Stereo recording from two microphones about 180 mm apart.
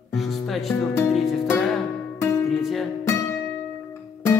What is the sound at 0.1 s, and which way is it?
Speech, centre (ahead or behind).